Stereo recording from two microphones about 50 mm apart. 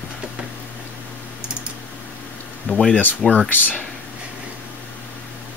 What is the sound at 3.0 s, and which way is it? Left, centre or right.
Speech, left.